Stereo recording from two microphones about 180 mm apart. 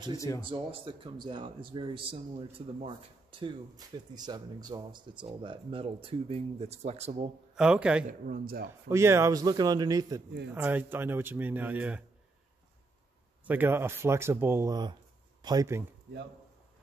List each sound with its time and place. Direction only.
0.5 s speech: 30° right (ahead or behind)
7.5 s a man's voice: 5° right (ahead or behind)
8.1 s a man's voice: 55° right (ahead or behind)
8.8 s speech: 15° right (ahead or behind)
13.5 s speech: 10° right (ahead or behind)